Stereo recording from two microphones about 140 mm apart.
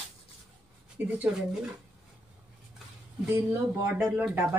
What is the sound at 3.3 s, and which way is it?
Speech, 15° right (ahead or behind).